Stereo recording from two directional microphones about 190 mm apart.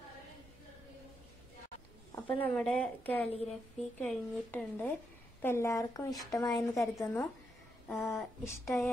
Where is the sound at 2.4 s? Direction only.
5° left (ahead or behind).